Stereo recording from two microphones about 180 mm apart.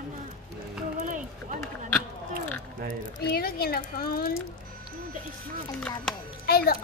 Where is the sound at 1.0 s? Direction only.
45° right (ahead or behind).